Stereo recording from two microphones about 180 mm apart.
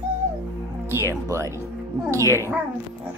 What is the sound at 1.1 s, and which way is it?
Speech, 15° right (ahead or behind).